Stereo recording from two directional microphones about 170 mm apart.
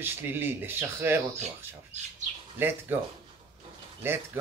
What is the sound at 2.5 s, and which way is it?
Speech, 10° right (ahead or behind).